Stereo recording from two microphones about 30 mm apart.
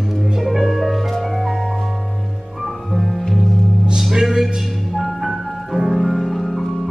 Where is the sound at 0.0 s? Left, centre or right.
Centre.